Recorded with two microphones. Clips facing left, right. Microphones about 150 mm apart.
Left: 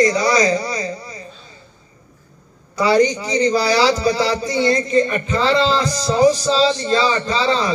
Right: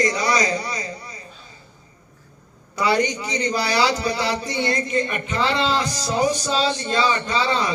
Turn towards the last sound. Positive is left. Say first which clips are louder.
# left 4 dB
turn(degrees=35)  # may be behind; listen again after turning